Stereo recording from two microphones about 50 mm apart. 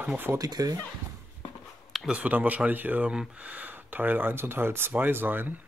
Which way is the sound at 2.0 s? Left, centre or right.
Right.